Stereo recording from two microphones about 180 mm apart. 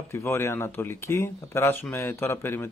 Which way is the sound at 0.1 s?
15° left (ahead or behind).